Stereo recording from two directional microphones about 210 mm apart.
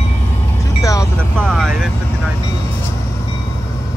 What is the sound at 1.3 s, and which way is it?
Vehicle, 5° left (ahead or behind).